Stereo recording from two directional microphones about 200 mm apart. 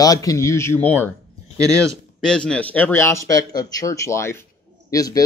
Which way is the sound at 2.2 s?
5° left (ahead or behind).